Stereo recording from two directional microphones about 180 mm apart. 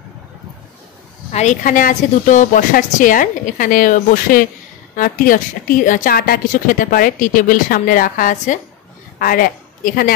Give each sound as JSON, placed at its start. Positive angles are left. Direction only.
{"t": 1.3, "sound": "a woman's voice", "side_deg": 40}